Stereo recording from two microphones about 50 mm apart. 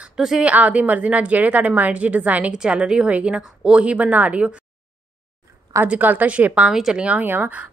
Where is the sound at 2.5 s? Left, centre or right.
Centre.